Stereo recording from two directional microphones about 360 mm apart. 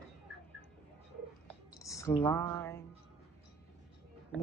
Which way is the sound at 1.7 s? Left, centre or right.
Centre.